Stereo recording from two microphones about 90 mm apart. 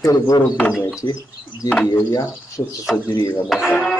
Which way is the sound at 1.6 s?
40° left (ahead or behind).